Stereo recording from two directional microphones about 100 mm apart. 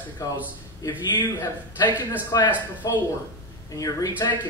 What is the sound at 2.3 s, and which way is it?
Speech, 35° left (ahead or behind).